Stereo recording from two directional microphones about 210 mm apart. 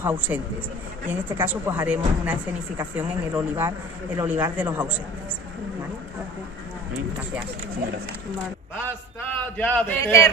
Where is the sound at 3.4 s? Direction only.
10° right (ahead or behind).